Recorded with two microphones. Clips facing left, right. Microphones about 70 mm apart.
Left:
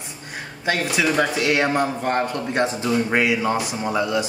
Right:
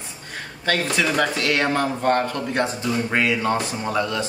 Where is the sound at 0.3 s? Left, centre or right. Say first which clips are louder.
Even; centre.